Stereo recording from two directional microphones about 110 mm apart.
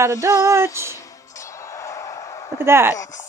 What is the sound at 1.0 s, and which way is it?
Music, 30° left (ahead or behind).